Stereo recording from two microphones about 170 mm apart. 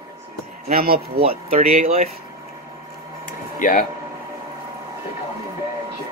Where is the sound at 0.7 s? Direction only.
60° right (ahead or behind).